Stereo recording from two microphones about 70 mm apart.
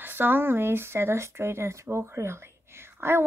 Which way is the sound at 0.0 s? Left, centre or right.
Right.